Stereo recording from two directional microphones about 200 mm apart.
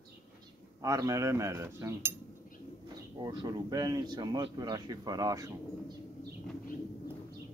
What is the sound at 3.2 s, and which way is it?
Speech, 20° right (ahead or behind).